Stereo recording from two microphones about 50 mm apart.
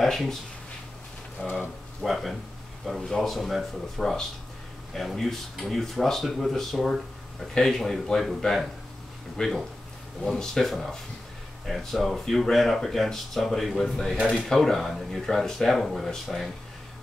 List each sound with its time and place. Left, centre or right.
0.0 s speech: centre
1.4 s speech: left
2.0 s speech: centre